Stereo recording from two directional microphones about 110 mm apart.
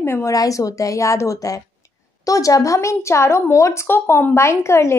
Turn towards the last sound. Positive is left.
turn(degrees=25)  # may be behind; listen again after turning